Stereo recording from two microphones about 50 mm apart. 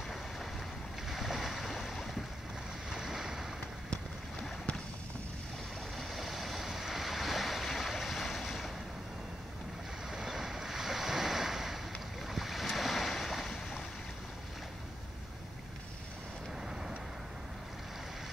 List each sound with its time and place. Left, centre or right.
1.0 s boat: centre
2.9 s waves: centre
3.9 s boat: left
5.9 s waves: centre
10.1 s waves: centre
12.3 s boat: centre